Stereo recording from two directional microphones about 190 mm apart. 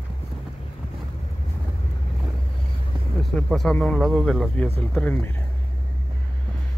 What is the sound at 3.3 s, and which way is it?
Speech, centre (ahead or behind).